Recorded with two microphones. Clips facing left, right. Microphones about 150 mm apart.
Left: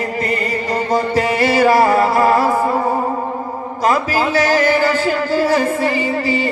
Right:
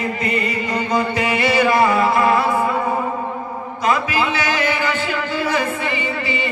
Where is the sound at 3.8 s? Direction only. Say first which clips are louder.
Left 3 dB; 40° left (ahead or behind).